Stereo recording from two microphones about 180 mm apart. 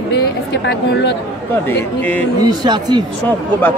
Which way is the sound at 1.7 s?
10° left (ahead or behind).